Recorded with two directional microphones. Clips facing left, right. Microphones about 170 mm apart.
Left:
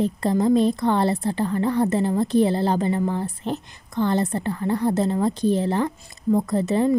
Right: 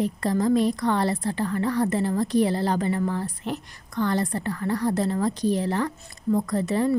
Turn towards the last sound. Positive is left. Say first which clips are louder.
# left 3 dB
turn(degrees=25)  # may be behind; listen again after turning